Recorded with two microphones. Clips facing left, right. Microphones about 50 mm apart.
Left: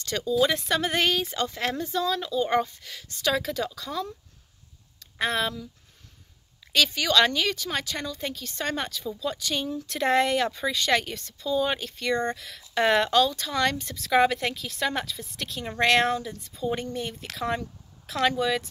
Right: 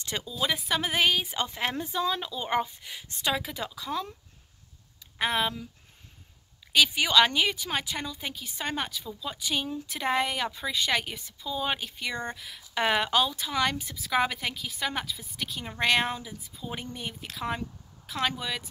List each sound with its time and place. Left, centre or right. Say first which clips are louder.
0.0 s speech: left 4 dB; centre
0.3 s speech: left 6 dB; centre
5.2 s speech: left 1 dB; centre
6.7 s speech: even; centre